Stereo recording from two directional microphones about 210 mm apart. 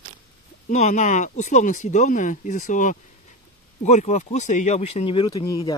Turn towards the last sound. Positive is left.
turn(degrees=20)  # may be behind; listen again after turning